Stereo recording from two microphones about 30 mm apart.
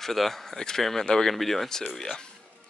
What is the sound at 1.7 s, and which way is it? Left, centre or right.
Speech, centre.